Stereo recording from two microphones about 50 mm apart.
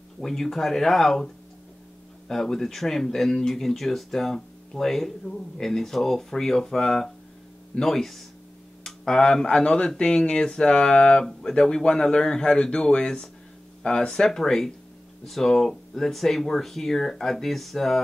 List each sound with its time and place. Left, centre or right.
0.2 s speech: centre